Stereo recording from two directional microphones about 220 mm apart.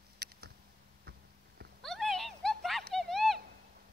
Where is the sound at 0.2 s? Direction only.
45° right (ahead or behind).